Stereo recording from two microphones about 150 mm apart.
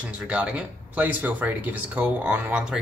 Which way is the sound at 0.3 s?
10° right (ahead or behind).